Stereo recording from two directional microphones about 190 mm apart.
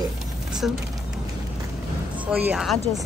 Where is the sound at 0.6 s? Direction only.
Centre (ahead or behind).